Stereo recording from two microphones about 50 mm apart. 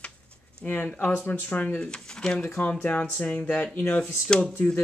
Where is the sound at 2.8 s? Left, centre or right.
Left.